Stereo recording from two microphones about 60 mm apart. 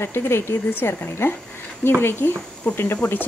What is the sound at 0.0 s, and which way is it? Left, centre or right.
Speech, left.